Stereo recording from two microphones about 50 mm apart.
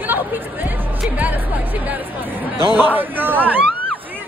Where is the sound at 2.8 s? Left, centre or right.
Right.